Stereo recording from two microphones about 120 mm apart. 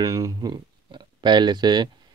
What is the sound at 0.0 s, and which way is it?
Speech, 30° right (ahead or behind).